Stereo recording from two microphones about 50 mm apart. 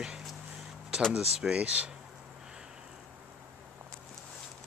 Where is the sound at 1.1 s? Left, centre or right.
Centre.